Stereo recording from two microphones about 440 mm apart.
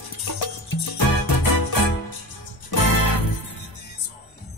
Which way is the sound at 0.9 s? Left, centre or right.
Left.